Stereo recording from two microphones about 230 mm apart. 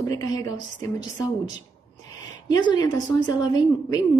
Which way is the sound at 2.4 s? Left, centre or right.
Centre.